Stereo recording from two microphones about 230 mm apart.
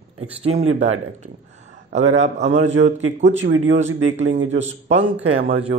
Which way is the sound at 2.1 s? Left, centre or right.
Right.